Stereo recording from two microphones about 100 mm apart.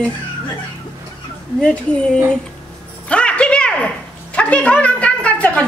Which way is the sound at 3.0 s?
10° left (ahead or behind).